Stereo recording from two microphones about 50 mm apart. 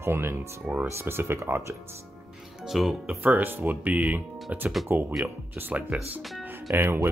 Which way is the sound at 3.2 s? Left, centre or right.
Right.